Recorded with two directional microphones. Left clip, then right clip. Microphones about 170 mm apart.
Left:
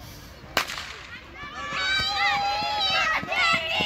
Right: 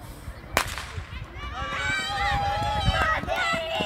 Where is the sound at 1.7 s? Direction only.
10° left (ahead or behind).